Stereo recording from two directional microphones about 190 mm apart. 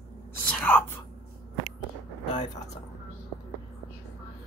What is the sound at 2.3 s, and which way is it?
Vehicle, 20° left (ahead or behind).